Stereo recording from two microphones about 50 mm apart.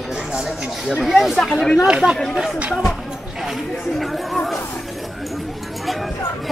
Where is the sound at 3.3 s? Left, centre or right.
Centre.